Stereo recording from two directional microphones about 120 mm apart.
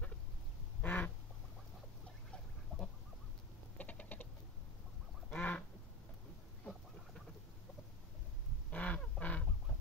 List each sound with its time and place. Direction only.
0.8 s quack: 15° left (ahead or behind)
2.7 s chicken: 5° left (ahead or behind)
3.7 s rodents: 10° left (ahead or behind)
5.3 s duck: 10° left (ahead or behind)
6.6 s a sound: 5° left (ahead or behind)
8.6 s quack: 10° left (ahead or behind)